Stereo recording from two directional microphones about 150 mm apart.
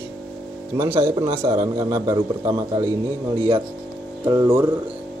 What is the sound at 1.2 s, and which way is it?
A man's voice, 20° right (ahead or behind).